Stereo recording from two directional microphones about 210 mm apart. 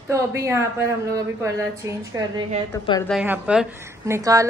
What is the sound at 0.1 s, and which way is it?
Speech, 15° right (ahead or behind).